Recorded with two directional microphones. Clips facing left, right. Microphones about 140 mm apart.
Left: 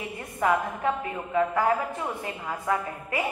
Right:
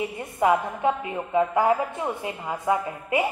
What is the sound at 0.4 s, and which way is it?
A woman's voice, 20° right (ahead or behind).